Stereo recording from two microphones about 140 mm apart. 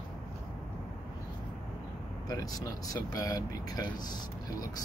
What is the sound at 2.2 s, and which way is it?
Speech, 25° left (ahead or behind).